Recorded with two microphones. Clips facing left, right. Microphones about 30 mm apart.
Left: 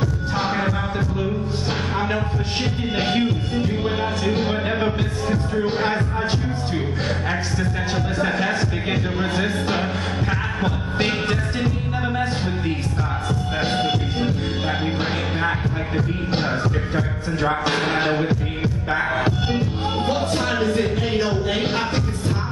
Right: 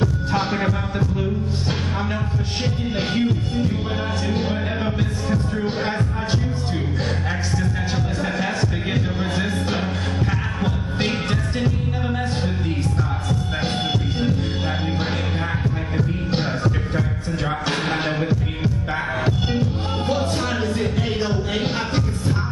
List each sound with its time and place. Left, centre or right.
0.4 s music: centre
3.0 s music: left
7.5 s music: left
13.3 s music: centre
17.5 s music: centre